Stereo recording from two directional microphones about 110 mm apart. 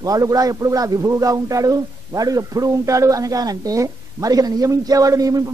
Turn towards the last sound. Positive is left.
turn(degrees=-35)  # may be behind; listen again after turning